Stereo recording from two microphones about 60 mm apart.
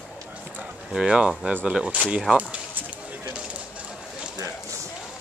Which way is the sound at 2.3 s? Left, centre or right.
Right.